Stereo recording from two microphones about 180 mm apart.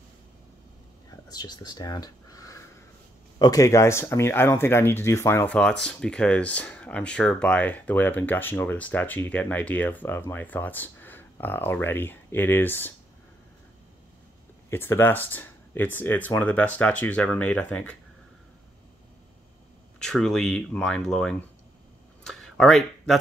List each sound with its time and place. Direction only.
1.3 s speech: 20° left (ahead or behind)
14.7 s speech: 10° left (ahead or behind)
20.0 s speech: centre (ahead or behind)
22.2 s a sound: centre (ahead or behind)